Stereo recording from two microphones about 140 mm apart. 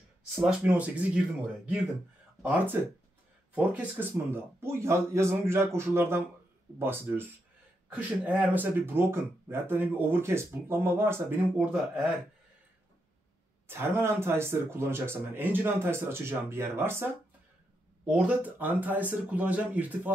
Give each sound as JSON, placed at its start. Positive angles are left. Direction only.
{"t": 0.4, "sound": "speech", "side_deg": -5}
{"t": 13.7, "sound": "speech", "side_deg": -15}